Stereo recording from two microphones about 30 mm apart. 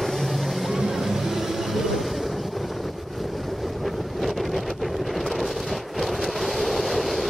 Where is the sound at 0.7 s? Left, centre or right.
Centre.